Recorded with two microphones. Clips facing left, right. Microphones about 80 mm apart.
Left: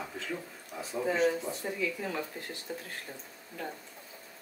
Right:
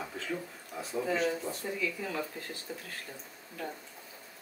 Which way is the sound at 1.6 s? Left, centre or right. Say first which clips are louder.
Left 1 dB; left.